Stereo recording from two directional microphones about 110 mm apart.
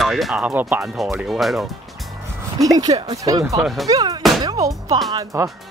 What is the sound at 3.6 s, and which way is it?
Speech, centre (ahead or behind).